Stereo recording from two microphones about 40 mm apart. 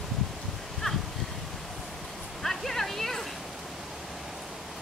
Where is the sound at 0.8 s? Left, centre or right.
Centre.